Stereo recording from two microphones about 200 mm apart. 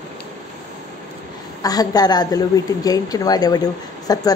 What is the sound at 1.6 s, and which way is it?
A woman's voice, 20° left (ahead or behind).